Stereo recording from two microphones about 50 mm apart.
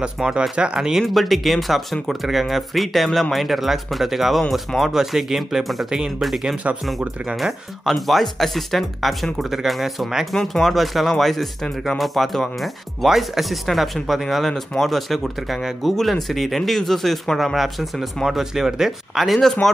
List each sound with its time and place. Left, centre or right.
0.0 s speech: centre
5.9 s speech: centre
7.3 s speech: centre
7.9 s speech: centre